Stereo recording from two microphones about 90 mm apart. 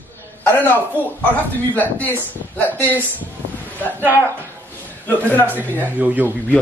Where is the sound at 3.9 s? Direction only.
25° right (ahead or behind).